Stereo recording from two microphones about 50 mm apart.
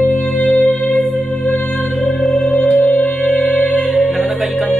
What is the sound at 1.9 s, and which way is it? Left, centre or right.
Music, centre.